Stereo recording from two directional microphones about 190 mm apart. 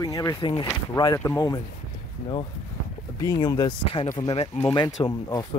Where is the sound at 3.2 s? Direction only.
20° left (ahead or behind).